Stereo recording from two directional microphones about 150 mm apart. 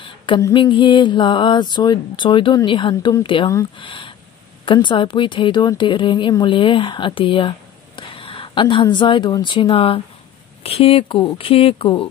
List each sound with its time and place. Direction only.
0.4 s speech: 30° left (ahead or behind)